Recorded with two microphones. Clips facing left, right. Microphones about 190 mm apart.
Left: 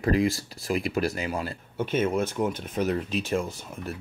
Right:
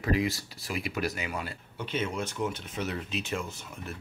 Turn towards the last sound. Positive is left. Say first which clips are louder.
# left 7 dB
turn(degrees=40)  # may be behind; listen again after turning